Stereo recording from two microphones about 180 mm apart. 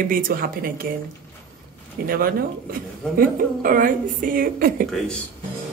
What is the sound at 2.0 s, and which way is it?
Speech, 55° right (ahead or behind).